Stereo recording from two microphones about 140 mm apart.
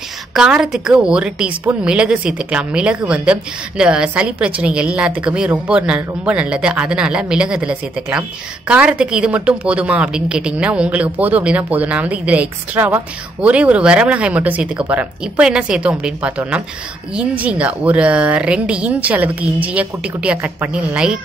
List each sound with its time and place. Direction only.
0.3 s a woman's voice: 5° right (ahead or behind)